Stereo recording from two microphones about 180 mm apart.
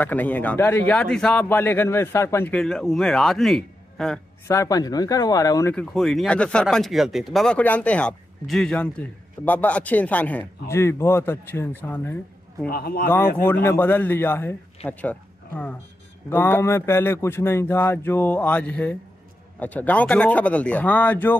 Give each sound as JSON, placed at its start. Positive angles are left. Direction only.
{"t": 0.0, "sound": "speech", "side_deg": 10}
{"t": 4.5, "sound": "speech", "side_deg": 15}
{"t": 12.6, "sound": "speech", "side_deg": 60}
{"t": 13.5, "sound": "speech", "side_deg": 10}